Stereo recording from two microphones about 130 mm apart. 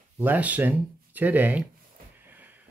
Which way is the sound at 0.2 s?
15° right (ahead or behind).